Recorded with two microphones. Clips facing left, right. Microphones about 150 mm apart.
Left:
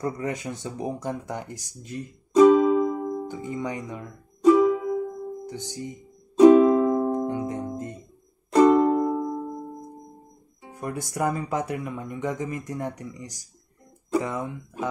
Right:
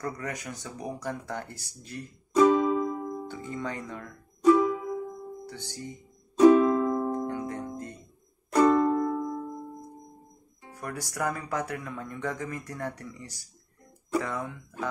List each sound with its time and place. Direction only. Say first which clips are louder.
0.0 s speech: left 6 dB; 25° left (ahead or behind)
6.4 s music: left 4 dB; 20° left (ahead or behind)
10.6 s speech: left 5 dB; 20° left (ahead or behind)